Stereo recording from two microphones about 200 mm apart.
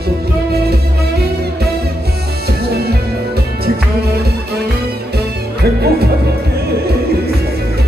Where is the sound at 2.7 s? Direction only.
50° right (ahead or behind).